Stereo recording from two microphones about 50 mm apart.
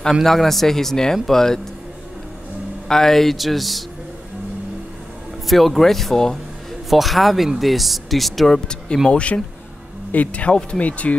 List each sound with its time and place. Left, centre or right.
0.1 s speech: centre
2.9 s speech: centre
5.5 s speech: centre
8.6 s speech: centre